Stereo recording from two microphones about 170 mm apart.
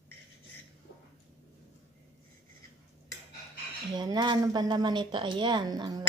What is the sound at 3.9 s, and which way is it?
Speech, 25° right (ahead or behind).